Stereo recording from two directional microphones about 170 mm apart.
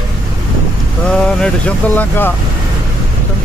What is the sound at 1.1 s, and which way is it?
Speech, 5° left (ahead or behind).